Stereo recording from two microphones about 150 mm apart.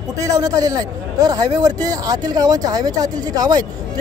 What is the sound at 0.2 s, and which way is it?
A man's voice, 25° right (ahead or behind).